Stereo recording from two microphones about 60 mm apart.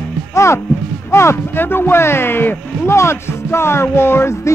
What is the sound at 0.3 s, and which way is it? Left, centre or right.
Speech, left.